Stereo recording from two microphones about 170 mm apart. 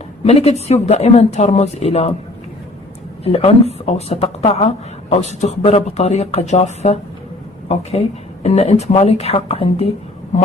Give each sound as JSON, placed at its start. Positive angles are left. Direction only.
{"t": 0.2, "sound": "speech", "side_deg": 40}
{"t": 3.3, "sound": "speech", "side_deg": 35}